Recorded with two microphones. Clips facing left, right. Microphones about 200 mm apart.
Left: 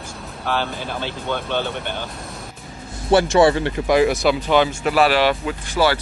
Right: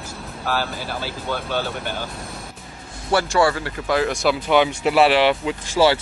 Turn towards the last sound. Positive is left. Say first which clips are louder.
# right 2 dB
turn(degrees=-25)  # may be behind; listen again after turning